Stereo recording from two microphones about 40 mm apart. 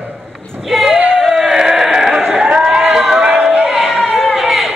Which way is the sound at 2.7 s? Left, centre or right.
Centre.